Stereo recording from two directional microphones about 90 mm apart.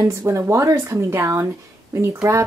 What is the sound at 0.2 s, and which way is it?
A woman's voice, 30° right (ahead or behind).